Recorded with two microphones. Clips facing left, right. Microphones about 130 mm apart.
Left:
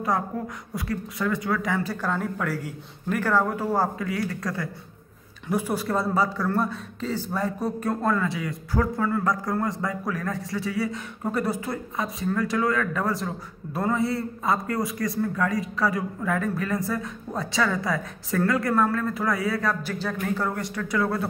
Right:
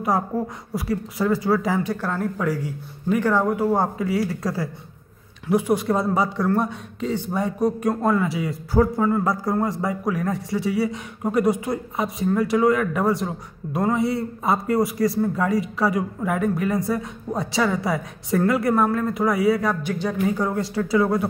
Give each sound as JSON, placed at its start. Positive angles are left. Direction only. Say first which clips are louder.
{"t": 0.7, "sound": "a man's voice", "louder": "right 5 dB", "side_deg": -30}
{"t": 2.0, "sound": "speech", "louder": "right 2 dB", "side_deg": -5}
{"t": 3.7, "sound": "a man's voice", "louder": "right 4 dB", "side_deg": -25}
{"t": 5.5, "sound": "a man's voice", "louder": "right 5 dB", "side_deg": -15}
{"t": 11.2, "sound": "a man's voice", "louder": "right 6 dB", "side_deg": -15}
{"t": 19.9, "sound": "speech", "louder": "right 5 dB", "side_deg": -10}
{"t": 20.5, "sound": "a man's voice", "louder": "right 6 dB", "side_deg": -30}